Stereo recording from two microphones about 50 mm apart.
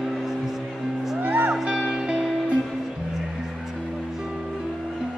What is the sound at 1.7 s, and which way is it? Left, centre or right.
Music, centre.